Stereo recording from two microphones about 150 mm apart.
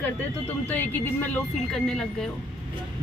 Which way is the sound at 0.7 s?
10° left (ahead or behind).